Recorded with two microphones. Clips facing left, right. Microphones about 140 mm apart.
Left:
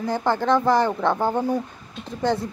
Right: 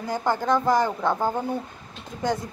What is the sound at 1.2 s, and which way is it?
Speech, 15° left (ahead or behind).